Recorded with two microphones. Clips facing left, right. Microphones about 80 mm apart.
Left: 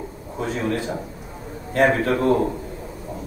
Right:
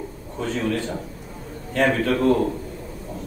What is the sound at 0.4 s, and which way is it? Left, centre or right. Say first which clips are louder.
A man's voice: even; centre.